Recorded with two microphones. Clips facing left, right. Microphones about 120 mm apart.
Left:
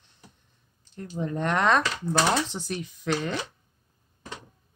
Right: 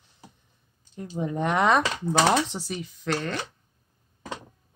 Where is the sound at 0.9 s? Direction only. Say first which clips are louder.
Right 1 dB; 15° right (ahead or behind).